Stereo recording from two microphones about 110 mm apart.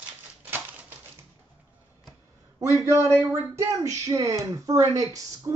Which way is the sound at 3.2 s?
25° right (ahead or behind).